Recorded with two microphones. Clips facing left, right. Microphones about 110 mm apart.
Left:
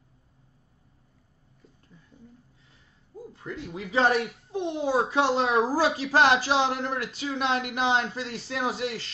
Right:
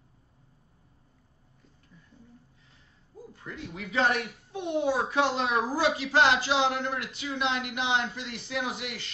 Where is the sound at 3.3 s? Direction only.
25° left (ahead or behind).